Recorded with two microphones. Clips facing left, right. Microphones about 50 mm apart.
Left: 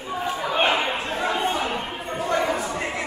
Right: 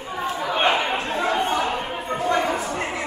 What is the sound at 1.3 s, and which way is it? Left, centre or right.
Chatter, right.